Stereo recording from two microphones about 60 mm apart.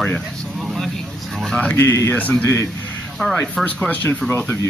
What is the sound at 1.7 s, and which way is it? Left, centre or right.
Speech, left.